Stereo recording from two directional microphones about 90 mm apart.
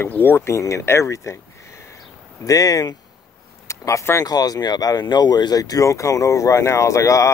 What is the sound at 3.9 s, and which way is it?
Speech, 30° left (ahead or behind).